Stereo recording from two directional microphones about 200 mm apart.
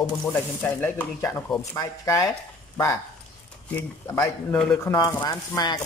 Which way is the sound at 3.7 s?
5° left (ahead or behind).